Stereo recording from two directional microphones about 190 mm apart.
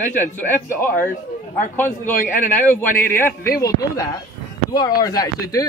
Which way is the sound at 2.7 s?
10° left (ahead or behind).